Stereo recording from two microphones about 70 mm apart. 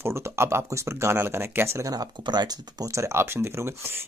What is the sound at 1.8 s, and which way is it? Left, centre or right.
Speech, right.